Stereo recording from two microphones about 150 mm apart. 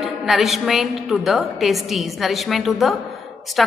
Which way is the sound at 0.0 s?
Centre (ahead or behind).